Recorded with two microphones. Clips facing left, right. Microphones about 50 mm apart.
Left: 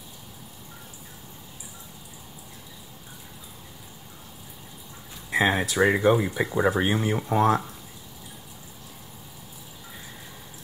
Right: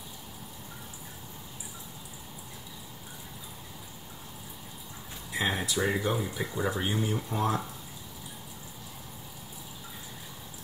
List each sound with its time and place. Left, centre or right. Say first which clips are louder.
5.3 s speech: left 7 dB; left